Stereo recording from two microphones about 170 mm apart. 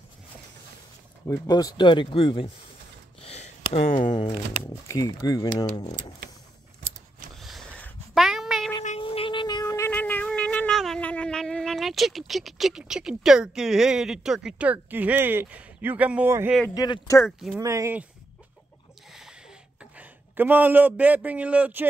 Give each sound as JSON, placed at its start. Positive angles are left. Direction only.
{"t": 1.2, "sound": "speech", "side_deg": 20}
{"t": 3.2, "sound": "a sound", "side_deg": 40}
{"t": 4.1, "sound": "speech", "side_deg": 25}
{"t": 7.3, "sound": "a sound", "side_deg": 0}
{"t": 8.1, "sound": "dog", "side_deg": 0}
{"t": 9.0, "sound": "a sound", "side_deg": 30}
{"t": 16.7, "sound": "speech", "side_deg": 20}
{"t": 17.6, "sound": "speech", "side_deg": -20}
{"t": 19.8, "sound": "a man's voice", "side_deg": -10}